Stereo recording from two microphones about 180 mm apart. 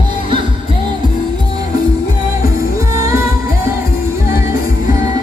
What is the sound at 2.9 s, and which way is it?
Music, 15° right (ahead or behind).